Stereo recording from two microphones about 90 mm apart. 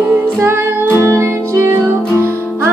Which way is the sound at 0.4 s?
25° right (ahead or behind).